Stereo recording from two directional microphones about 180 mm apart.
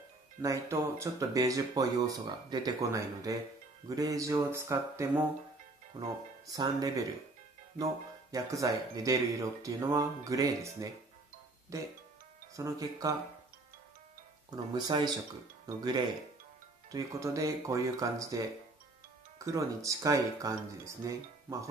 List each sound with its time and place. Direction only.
0.4 s speech: 15° right (ahead or behind)
14.5 s speech: 25° right (ahead or behind)